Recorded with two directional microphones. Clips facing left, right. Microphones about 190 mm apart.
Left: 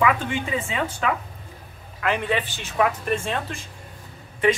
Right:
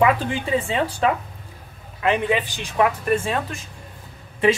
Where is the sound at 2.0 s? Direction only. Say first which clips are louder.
Right 3 dB; 20° right (ahead or behind).